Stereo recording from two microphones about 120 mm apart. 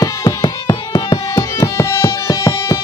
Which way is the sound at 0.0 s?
30° left (ahead or behind).